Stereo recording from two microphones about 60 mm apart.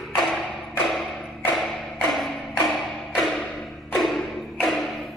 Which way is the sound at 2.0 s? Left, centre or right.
Centre.